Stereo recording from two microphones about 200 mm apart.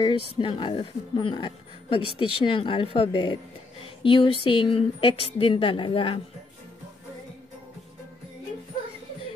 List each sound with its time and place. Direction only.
0.0 s speech: 25° left (ahead or behind)